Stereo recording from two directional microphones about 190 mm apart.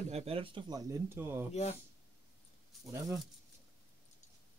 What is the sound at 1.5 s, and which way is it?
Speech, 35° left (ahead or behind).